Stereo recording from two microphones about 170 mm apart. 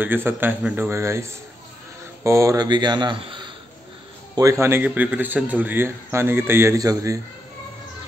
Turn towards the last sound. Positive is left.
turn(degrees=-20)  # may be behind; listen again after turning